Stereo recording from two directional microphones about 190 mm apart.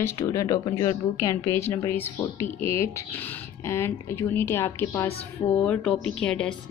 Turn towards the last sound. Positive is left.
turn(degrees=5)  # may be behind; listen again after turning